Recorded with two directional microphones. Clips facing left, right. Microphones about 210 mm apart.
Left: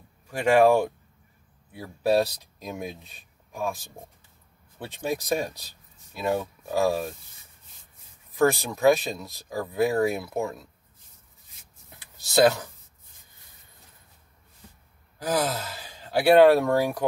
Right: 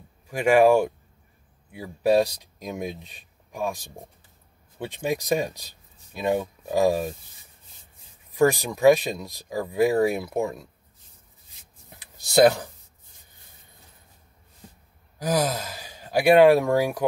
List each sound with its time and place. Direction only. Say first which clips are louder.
0.3 s speech: right 2 dB; 10° right (ahead or behind)
8.4 s speech: right 2 dB; 15° right (ahead or behind)
12.0 s speech: right 3 dB; 15° right (ahead or behind)
15.3 s speech: right 2 dB; 15° right (ahead or behind)